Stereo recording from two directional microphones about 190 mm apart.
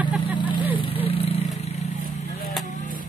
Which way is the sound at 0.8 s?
30° left (ahead or behind).